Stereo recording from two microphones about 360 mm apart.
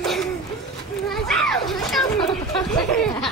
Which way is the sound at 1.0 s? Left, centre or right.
Centre.